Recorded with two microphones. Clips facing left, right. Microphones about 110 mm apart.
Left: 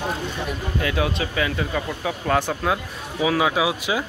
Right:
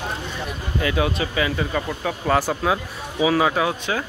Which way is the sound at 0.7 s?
Centre (ahead or behind).